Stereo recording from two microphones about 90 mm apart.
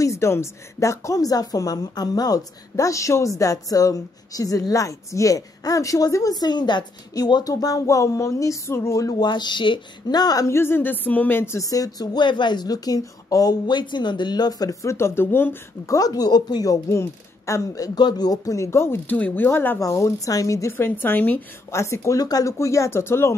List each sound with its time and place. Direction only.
0.0 s speech: 35° left (ahead or behind)
9.2 s speech: 55° left (ahead or behind)
10.5 s a sound: 25° left (ahead or behind)
11.6 s speech: 40° left (ahead or behind); by 15.6 s 25° left (ahead or behind)
15.9 s speech: 40° left (ahead or behind)
19.1 s a sound: 20° left (ahead or behind)
19.8 s speech: 30° left (ahead or behind)
20.7 s a sound: 25° left (ahead or behind)
21.6 s speech: 30° left (ahead or behind)